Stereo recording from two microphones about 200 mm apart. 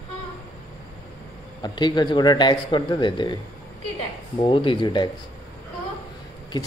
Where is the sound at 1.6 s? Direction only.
20° left (ahead or behind).